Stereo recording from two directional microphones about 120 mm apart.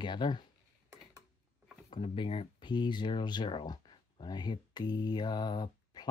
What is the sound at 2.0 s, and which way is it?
Speech, 45° left (ahead or behind).